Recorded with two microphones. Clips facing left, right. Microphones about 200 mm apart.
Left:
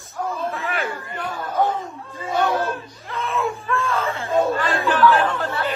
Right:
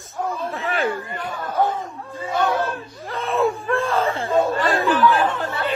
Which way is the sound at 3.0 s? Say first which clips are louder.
Right 4 dB; 35° right (ahead or behind).